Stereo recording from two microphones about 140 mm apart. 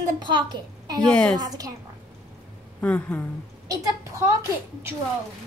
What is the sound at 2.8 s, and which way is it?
Speech, 10° left (ahead or behind).